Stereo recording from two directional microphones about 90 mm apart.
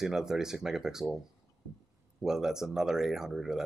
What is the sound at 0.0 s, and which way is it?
Speech, 5° right (ahead or behind).